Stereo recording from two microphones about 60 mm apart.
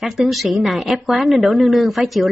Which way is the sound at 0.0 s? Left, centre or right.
Centre.